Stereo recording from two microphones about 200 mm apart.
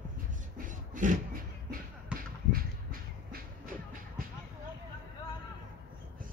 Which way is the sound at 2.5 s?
45° right (ahead or behind).